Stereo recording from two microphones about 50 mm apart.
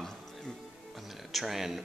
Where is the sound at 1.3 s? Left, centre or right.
Centre.